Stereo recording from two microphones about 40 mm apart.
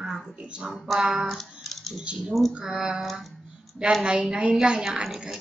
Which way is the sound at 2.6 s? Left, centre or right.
Centre.